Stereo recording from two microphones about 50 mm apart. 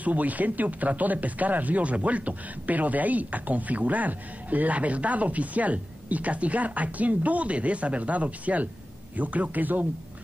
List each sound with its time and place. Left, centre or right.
0.0 s speech: right